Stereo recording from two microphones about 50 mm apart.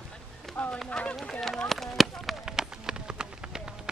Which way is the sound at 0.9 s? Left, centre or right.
Centre.